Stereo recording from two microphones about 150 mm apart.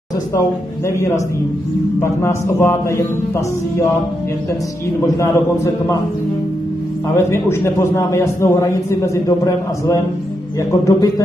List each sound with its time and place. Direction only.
0.8 s a man's voice: 20° left (ahead or behind)
5.0 s a man's voice: 20° left (ahead or behind)
7.2 s a man's voice: 15° left (ahead or behind)